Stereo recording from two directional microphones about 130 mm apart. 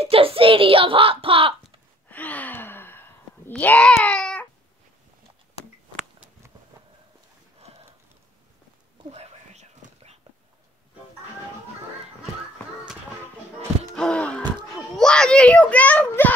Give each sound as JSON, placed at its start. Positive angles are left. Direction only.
{"t": 0.0, "sound": "a sound", "side_deg": -45}
{"t": 2.0, "sound": "gasp", "side_deg": 10}
{"t": 7.7, "sound": "horse", "side_deg": -55}
{"t": 9.1, "sound": "whispering", "side_deg": -55}
{"t": 13.9, "sound": "a sound", "side_deg": 5}
{"t": 14.7, "sound": "a child's voice", "side_deg": 0}